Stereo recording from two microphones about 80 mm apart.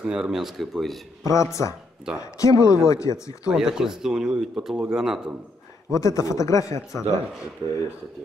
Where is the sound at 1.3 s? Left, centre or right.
Left.